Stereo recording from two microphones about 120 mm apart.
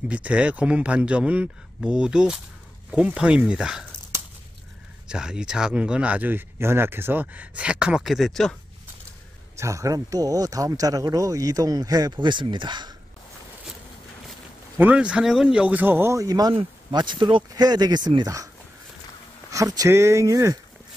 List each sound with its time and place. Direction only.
0.1 s speech: 10° right (ahead or behind)
5.0 s speech: 5° right (ahead or behind)
9.6 s speech: 25° right (ahead or behind)
14.8 s speech: 10° right (ahead or behind); by 18.5 s 30° right (ahead or behind)
19.5 s speech: 30° right (ahead or behind)